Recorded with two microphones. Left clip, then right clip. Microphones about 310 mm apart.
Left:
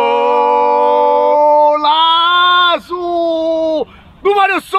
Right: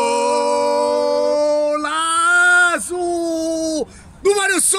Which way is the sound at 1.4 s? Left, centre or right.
Centre.